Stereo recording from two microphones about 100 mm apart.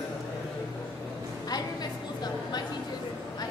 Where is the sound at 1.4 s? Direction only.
45° left (ahead or behind).